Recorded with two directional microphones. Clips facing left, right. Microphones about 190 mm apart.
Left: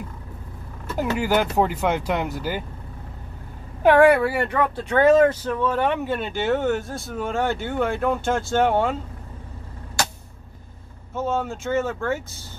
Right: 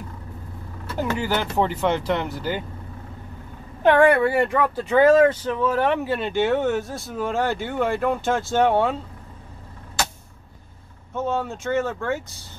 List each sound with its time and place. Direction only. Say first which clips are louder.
0.9 s speech: left 3 dB; 10° left (ahead or behind)
3.8 s speech: left 1 dB; 5° left (ahead or behind)
11.1 s speech: even; centre (ahead or behind)